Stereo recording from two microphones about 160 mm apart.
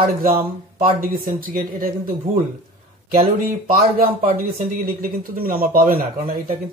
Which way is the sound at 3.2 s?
70° right (ahead or behind).